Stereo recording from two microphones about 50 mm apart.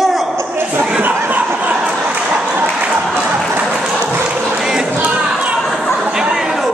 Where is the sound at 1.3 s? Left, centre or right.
Right.